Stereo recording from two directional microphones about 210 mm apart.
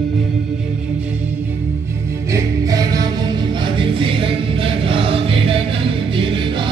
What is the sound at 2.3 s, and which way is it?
Music, 15° right (ahead or behind).